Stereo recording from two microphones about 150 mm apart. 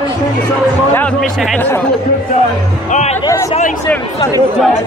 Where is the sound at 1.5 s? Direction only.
10° left (ahead or behind).